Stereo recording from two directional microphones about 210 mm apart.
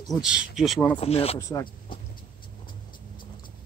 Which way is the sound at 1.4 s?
15° left (ahead or behind).